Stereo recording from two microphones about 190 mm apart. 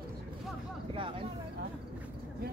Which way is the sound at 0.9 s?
25° right (ahead or behind).